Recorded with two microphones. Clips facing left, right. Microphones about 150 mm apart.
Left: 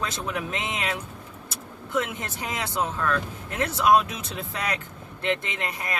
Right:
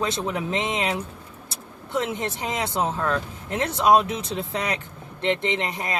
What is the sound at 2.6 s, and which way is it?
Speech, 25° right (ahead or behind).